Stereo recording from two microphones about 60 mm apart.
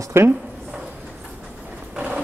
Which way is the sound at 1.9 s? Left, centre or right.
Right.